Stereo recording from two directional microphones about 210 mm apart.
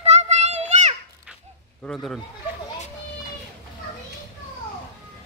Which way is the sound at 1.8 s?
5° left (ahead or behind).